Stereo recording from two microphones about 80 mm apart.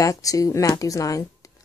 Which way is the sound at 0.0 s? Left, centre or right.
Left.